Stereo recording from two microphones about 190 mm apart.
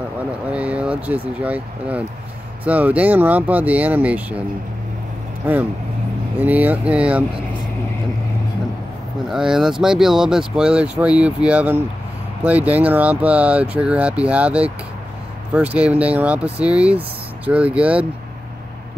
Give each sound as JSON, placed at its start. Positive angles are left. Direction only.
{"t": 0.5, "sound": "speech", "side_deg": -5}
{"t": 6.4, "sound": "speech", "side_deg": -10}
{"t": 9.3, "sound": "speech", "side_deg": -5}